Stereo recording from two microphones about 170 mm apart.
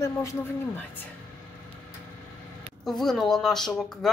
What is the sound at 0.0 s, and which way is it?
Speech, 20° left (ahead or behind).